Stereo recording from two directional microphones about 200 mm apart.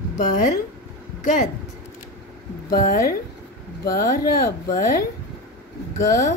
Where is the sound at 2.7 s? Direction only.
50° left (ahead or behind).